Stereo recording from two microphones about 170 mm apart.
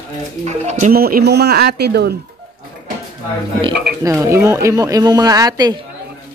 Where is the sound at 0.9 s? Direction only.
60° right (ahead or behind).